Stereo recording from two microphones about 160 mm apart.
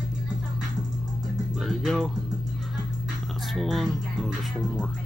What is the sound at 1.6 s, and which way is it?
Speech, centre (ahead or behind).